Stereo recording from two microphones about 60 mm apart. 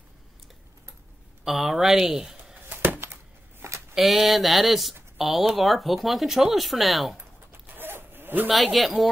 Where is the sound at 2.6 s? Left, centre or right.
Right.